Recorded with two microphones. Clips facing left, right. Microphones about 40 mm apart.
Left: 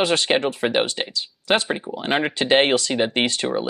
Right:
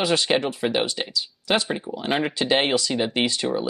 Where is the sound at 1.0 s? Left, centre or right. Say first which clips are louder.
Left 1 dB; left.